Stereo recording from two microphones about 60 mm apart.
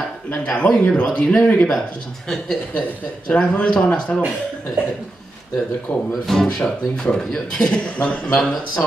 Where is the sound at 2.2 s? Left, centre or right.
Centre.